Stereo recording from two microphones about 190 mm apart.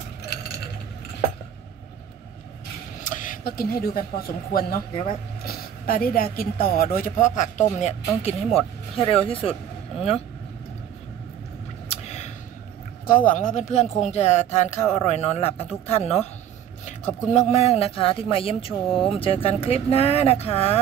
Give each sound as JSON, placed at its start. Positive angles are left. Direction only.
{"t": 3.0, "sound": "speech", "side_deg": 45}
{"t": 11.9, "sound": "a sound", "side_deg": 35}
{"t": 13.3, "sound": "speech", "side_deg": 40}